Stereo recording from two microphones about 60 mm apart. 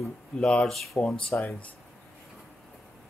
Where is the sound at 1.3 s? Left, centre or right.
Left.